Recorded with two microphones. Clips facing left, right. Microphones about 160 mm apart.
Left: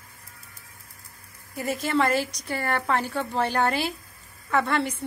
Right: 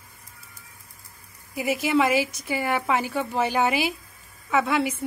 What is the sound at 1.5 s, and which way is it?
A woman's voice, 5° right (ahead or behind).